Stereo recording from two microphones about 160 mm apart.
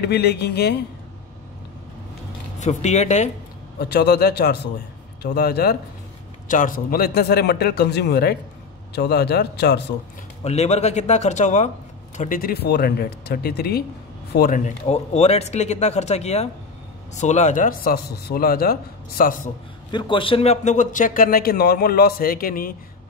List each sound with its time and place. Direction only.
0.0 s a man's voice: 90° left
2.6 s speech: 45° left (ahead or behind)
3.9 s a man's voice: 90° left
6.4 s a man's voice: 55° left (ahead or behind); by 9.8 s 90° left
10.4 s speech: 40° left (ahead or behind)
12.2 s speech: 60° left (ahead or behind)
14.9 s a man's voice: 40° left (ahead or behind); by 19.5 s 60° left (ahead or behind)
19.9 s a man's voice: 30° left (ahead or behind); by 22.8 s 65° left (ahead or behind)